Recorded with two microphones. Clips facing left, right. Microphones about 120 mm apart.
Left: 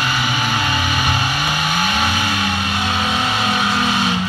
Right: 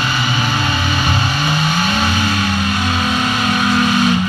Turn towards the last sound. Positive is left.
turn(degrees=20)  # may be behind; listen again after turning